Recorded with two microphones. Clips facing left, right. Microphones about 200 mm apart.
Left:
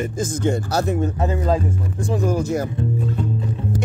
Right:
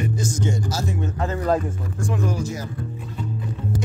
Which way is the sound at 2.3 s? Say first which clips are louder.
Left 7 dB; 55° left (ahead or behind).